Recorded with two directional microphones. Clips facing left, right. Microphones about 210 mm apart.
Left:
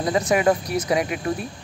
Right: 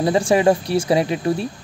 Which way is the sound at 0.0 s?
30° right (ahead or behind).